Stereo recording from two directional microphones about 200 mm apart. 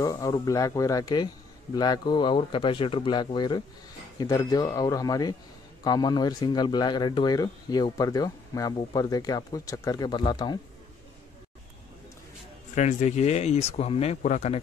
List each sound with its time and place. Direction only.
0.0 s speech: 15° left (ahead or behind)
12.7 s speech: 35° left (ahead or behind)